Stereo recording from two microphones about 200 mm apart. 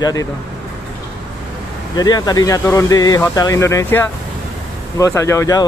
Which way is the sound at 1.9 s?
20° left (ahead or behind).